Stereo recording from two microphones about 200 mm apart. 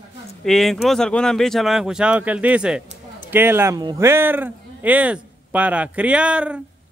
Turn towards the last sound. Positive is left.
turn(degrees=-5)  # may be behind; listen again after turning